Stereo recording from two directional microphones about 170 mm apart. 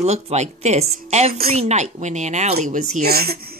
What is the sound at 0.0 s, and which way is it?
Speech, 40° right (ahead or behind).